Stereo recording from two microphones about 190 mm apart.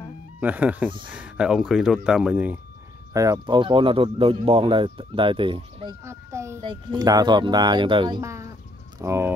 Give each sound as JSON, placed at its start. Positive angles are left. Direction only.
{"t": 0.4, "sound": "speech", "side_deg": -10}
{"t": 3.1, "sound": "speech", "side_deg": -20}
{"t": 6.0, "sound": "speech", "side_deg": -15}